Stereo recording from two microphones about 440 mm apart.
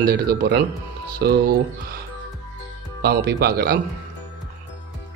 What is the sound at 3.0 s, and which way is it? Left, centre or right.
Speech, right.